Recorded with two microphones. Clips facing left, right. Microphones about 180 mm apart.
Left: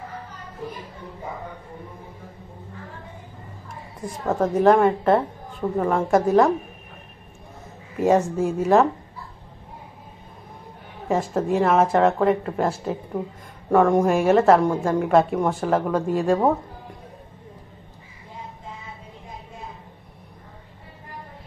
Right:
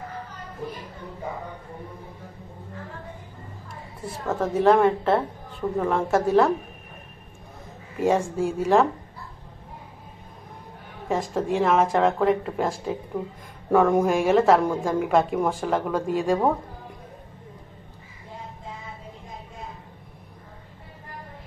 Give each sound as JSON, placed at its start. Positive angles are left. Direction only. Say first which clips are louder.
{"t": 4.3, "sound": "a woman's voice", "louder": "left 2 dB", "side_deg": 10}
{"t": 8.2, "sound": "speech", "louder": "left 3 dB", "side_deg": -10}
{"t": 8.5, "sound": "a woman's voice", "louder": "left 2 dB", "side_deg": 10}
{"t": 11.1, "sound": "a woman's voice", "louder": "left 3 dB", "side_deg": 5}